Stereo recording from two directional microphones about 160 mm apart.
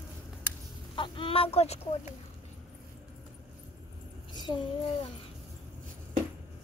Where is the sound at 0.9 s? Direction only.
30° left (ahead or behind).